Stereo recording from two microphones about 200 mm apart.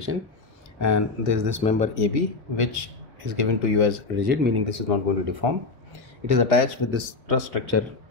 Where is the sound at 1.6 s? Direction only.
35° left (ahead or behind).